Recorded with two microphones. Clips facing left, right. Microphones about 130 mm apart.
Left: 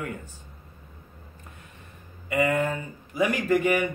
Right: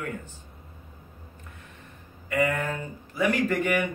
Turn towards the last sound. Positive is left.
turn(degrees=10)  # may be behind; listen again after turning